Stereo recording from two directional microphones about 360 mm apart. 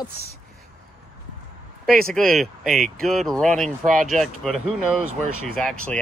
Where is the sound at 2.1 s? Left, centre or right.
Centre.